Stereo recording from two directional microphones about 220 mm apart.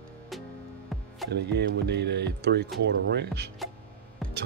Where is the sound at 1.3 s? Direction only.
50° right (ahead or behind).